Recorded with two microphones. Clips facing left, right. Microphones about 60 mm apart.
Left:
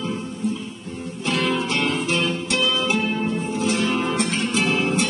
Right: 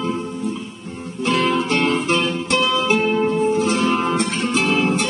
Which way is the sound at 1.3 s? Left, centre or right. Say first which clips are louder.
Right 4 dB; right.